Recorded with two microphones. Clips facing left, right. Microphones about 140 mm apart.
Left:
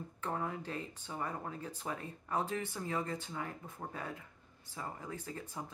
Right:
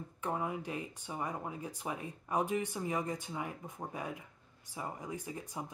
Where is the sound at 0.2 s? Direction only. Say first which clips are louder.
Right 2 dB; 15° right (ahead or behind).